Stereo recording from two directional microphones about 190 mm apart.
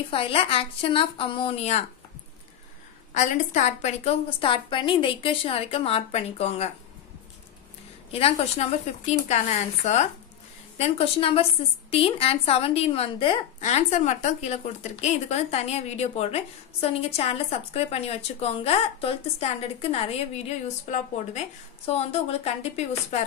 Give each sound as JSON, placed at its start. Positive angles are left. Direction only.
{"t": 0.1, "sound": "a woman's voice", "side_deg": 30}
{"t": 3.2, "sound": "a woman's voice", "side_deg": 40}
{"t": 8.1, "sound": "a woman's voice", "side_deg": 30}